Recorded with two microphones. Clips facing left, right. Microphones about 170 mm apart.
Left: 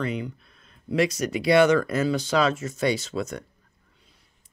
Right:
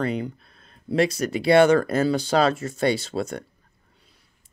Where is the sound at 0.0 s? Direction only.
35° right (ahead or behind).